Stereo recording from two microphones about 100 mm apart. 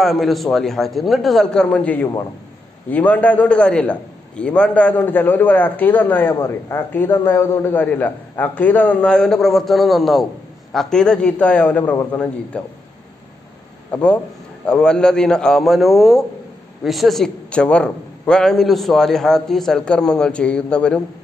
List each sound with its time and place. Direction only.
0.0 s a man's voice: centre (ahead or behind)
11.9 s a man's voice: 25° left (ahead or behind)
12.5 s a man's voice: 10° left (ahead or behind)
13.9 s a man's voice: 10° left (ahead or behind)